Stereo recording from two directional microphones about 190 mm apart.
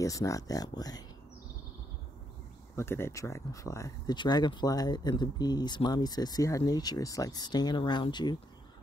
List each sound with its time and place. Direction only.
0.0 s speech: 15° left (ahead or behind)
2.7 s speech: 15° left (ahead or behind)